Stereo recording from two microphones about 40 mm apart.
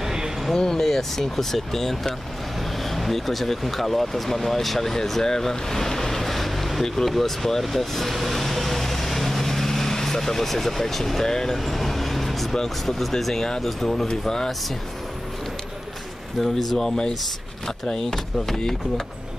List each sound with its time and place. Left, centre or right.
0.0 s a sound: centre
0.6 s speech: centre
7.6 s vehicle: centre
11.2 s speech: centre
11.5 s vehicle: centre
12.6 s speech: centre
16.3 s speech: centre